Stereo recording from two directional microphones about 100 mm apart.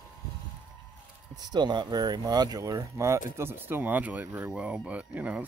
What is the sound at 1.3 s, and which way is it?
Speech, 45° right (ahead or behind).